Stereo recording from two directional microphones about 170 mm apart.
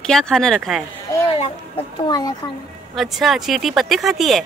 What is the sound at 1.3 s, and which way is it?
Speech, 35° left (ahead or behind).